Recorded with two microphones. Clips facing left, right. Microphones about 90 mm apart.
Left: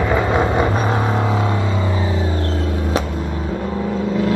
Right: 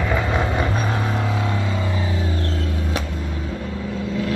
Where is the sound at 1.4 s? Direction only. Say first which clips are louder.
Left 4 dB; 15° left (ahead or behind).